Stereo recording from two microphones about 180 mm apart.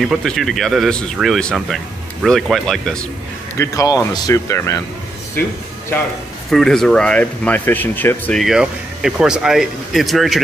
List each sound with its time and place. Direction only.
0.0 s speech: centre (ahead or behind)
3.5 s speech: 20° left (ahead or behind)
6.5 s speech: centre (ahead or behind)